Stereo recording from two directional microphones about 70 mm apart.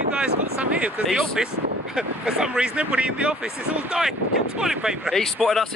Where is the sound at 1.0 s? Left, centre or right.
Centre.